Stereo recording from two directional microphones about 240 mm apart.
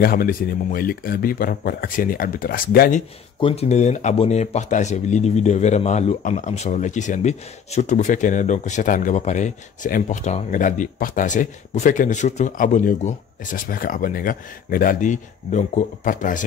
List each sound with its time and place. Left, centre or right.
0.0 s speech: left
3.3 s speech: left